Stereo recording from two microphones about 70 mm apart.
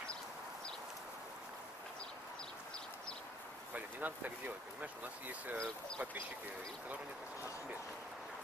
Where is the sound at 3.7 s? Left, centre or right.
Right.